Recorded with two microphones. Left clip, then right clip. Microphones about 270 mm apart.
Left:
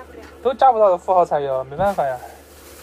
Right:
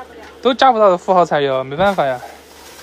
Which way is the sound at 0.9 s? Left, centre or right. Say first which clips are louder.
Right 3 dB; right.